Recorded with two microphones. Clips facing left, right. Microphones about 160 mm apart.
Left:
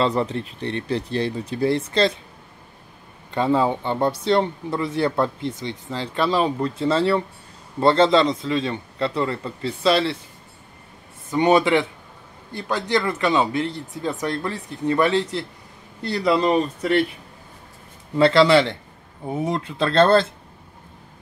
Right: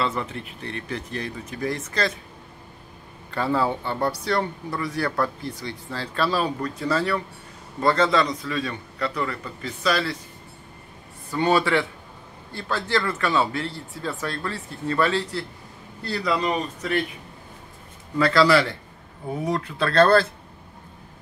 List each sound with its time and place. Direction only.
0.0 s speech: 35° left (ahead or behind)
3.3 s speech: 20° left (ahead or behind)
11.2 s speech: 20° left (ahead or behind)
18.1 s speech: 25° left (ahead or behind)